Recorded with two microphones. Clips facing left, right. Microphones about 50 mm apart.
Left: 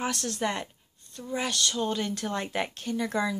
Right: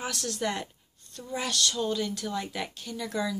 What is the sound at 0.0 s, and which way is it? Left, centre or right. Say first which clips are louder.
Speech: left 3 dB; left.